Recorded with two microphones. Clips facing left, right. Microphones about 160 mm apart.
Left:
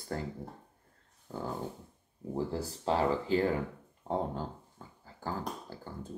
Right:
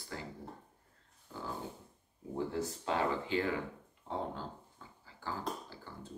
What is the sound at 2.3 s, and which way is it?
Speech, 35° left (ahead or behind).